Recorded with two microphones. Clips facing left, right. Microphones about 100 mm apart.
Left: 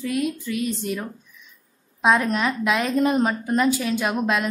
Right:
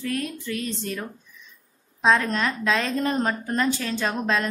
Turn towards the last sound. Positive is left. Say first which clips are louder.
# left 2 dB
turn(degrees=10)  # may be behind; listen again after turning